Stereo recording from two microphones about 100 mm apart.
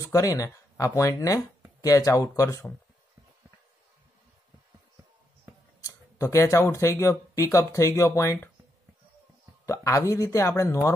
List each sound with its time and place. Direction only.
0.0 s speech: 35° left (ahead or behind)
5.8 s speech: 30° left (ahead or behind)
9.7 s speech: 30° left (ahead or behind)